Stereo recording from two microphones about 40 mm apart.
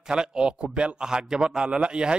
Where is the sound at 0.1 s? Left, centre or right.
Right.